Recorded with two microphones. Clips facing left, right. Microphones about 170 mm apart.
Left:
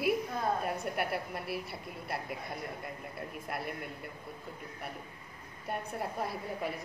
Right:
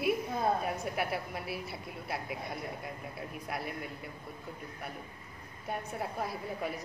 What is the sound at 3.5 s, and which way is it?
Speech, centre (ahead or behind).